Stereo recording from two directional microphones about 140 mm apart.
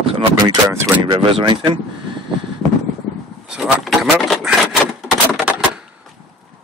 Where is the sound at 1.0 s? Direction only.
35° right (ahead or behind).